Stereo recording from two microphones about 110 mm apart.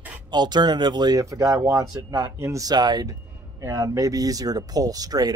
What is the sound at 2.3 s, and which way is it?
Speech, 25° right (ahead or behind).